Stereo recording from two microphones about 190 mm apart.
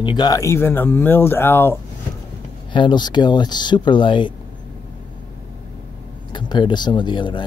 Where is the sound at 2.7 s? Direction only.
25° left (ahead or behind).